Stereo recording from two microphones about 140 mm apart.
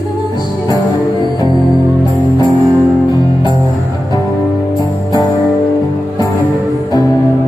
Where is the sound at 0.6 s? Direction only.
25° left (ahead or behind).